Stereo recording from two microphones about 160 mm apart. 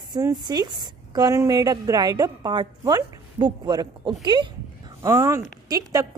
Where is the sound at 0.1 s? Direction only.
25° right (ahead or behind).